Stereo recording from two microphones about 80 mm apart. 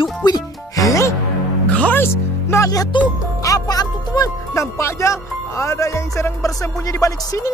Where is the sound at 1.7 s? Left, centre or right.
Centre.